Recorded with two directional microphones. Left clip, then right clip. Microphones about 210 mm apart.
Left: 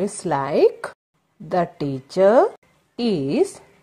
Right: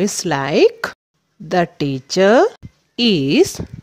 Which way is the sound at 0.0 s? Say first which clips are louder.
Right 4 dB; 50° right (ahead or behind).